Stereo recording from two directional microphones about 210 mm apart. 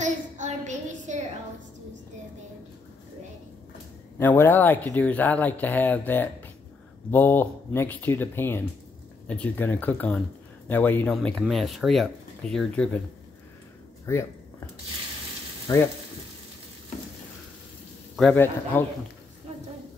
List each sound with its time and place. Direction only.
0.0 s a sound: 35° right (ahead or behind)
4.2 s speech: 10° left (ahead or behind)
15.7 s speech: 10° left (ahead or behind)
18.1 s speech: 5° left (ahead or behind)